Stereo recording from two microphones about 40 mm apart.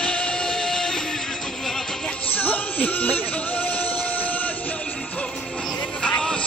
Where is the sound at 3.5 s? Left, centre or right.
Left.